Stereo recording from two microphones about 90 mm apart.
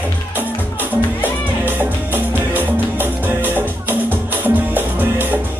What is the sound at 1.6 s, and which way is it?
Music, 20° right (ahead or behind).